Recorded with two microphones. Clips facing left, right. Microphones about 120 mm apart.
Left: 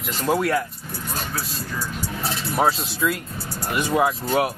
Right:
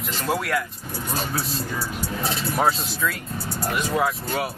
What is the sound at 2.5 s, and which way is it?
Speech, centre (ahead or behind).